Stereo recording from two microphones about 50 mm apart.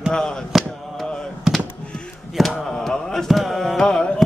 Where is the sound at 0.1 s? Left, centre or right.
Centre.